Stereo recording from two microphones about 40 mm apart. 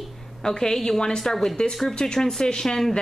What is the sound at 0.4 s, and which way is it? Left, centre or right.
A woman's voice, centre.